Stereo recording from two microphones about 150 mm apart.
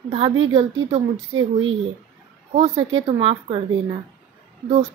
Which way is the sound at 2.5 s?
45° right (ahead or behind).